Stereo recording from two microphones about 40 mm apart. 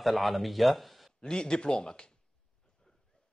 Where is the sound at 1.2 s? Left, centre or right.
Left.